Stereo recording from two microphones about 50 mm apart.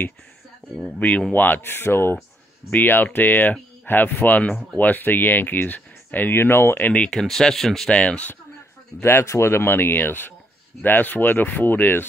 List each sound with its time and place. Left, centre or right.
0.9 s speech: left
1.3 s speech: left
2.7 s speech: left
7.1 s speech: centre
7.9 s speech: left
9.0 s speech: left